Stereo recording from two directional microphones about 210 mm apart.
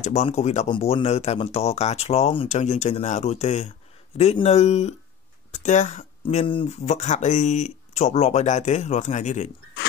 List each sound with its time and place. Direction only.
0.0 s speech: 30° left (ahead or behind)